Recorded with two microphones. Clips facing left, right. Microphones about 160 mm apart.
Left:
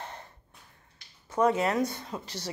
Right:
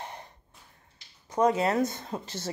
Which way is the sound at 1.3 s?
15° right (ahead or behind).